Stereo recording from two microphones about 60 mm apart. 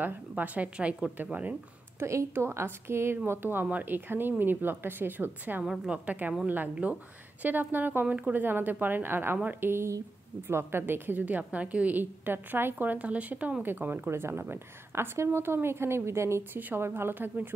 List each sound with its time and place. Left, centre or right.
0.4 s speech: right
2.0 s a woman's voice: right
5.6 s a woman's voice: centre
6.0 s a woman's voice: right
9.7 s a woman's voice: right
16.5 s a woman's voice: right